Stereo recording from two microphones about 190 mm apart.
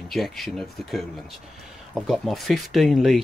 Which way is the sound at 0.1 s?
Centre (ahead or behind).